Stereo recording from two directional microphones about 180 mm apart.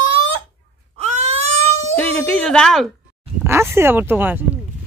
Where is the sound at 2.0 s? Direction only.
5° left (ahead or behind).